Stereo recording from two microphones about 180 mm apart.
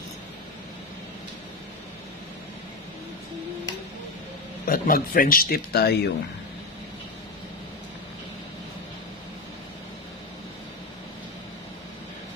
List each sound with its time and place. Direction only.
4.6 s speech: 50° left (ahead or behind)